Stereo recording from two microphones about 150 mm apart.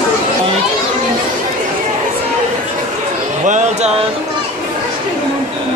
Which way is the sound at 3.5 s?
50° right (ahead or behind).